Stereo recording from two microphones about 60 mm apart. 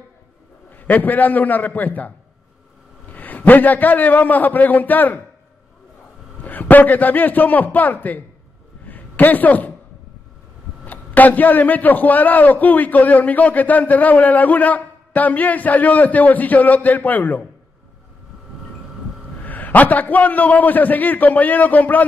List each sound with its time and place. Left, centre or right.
0.7 s a man's voice: left
6.4 s a man's voice: left
8.8 s a sound: left
10.9 s a man's voice: left
19.4 s a man's voice: left